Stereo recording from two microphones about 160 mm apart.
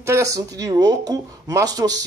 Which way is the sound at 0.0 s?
20° right (ahead or behind).